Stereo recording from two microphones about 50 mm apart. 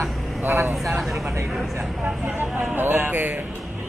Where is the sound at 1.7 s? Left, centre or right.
Right.